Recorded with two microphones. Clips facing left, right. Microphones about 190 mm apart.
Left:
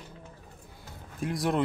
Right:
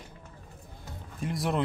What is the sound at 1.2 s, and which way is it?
Speech, centre (ahead or behind).